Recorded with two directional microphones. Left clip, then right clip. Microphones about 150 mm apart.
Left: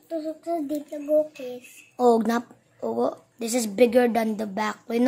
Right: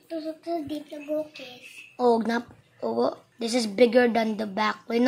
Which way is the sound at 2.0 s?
35° left (ahead or behind).